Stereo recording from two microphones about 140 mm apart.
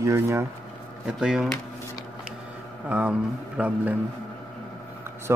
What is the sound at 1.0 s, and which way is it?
Speech, 5° right (ahead or behind).